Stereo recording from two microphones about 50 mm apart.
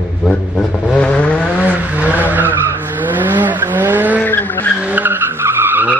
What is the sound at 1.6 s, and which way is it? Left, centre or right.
Vehicle, right.